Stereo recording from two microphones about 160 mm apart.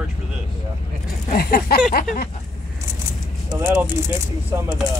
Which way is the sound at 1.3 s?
75° left (ahead or behind).